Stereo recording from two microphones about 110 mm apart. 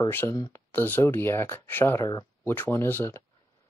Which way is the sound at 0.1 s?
20° left (ahead or behind).